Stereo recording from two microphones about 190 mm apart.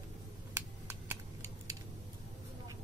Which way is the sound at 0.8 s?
15° right (ahead or behind).